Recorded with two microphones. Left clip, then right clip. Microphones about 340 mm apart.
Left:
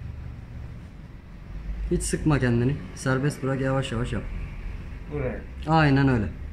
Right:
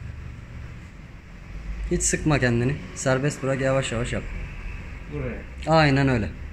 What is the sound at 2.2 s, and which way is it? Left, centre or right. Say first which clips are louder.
Speech: right 1 dB; centre.